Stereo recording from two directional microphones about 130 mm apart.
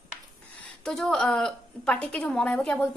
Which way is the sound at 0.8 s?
5° left (ahead or behind).